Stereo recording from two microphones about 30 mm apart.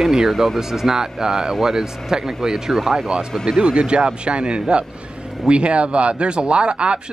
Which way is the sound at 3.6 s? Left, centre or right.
Right.